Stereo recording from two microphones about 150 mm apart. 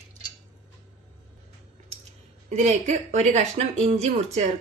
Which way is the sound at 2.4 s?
50° right (ahead or behind).